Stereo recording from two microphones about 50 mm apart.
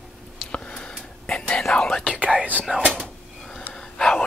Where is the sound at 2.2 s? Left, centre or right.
Right.